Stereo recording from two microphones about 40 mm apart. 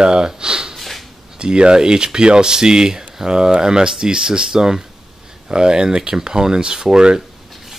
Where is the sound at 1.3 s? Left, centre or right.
Right.